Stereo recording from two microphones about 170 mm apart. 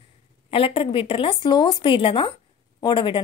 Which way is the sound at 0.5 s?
35° left (ahead or behind).